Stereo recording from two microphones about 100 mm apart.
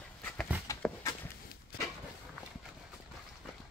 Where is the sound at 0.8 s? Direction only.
5° left (ahead or behind).